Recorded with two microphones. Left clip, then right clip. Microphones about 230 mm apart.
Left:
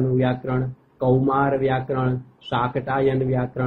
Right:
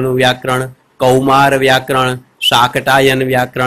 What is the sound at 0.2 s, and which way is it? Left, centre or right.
Speech, right.